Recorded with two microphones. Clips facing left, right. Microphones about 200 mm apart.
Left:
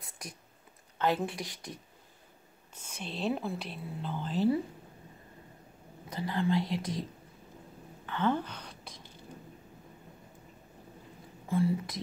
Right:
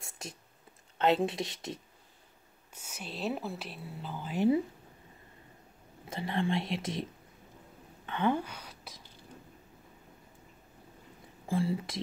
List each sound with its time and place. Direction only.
0.0 s a sound: 25° right (ahead or behind)
0.9 s speech: 25° right (ahead or behind)
2.7 s speech: 10° right (ahead or behind)
6.0 s speech: 25° right (ahead or behind)
8.1 s a sound: 15° right (ahead or behind)
11.4 s speech: 30° right (ahead or behind)